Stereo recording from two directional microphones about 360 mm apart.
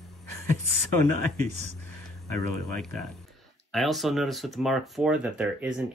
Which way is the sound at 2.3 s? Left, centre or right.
Centre.